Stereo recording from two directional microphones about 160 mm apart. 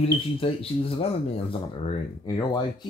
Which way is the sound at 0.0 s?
35° left (ahead or behind).